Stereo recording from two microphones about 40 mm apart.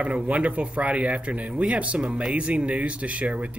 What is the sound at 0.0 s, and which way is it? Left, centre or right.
Speech, right.